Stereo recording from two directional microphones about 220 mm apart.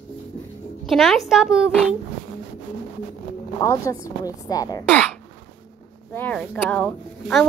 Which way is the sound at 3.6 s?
15° left (ahead or behind).